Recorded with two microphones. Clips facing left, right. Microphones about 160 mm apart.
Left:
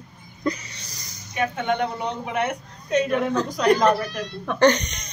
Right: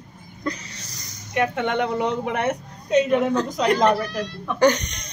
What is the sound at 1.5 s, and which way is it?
Speech, 90° right.